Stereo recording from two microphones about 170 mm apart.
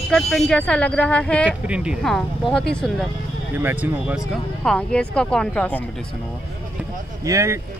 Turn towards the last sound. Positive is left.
turn(degrees=-15)  # may be behind; listen again after turning